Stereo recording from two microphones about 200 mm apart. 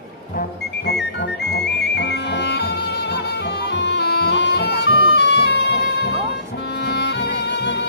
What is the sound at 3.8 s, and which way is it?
Music, 55° left (ahead or behind).